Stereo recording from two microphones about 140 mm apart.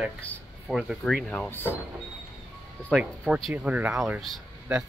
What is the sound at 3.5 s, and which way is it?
Speech, 10° right (ahead or behind).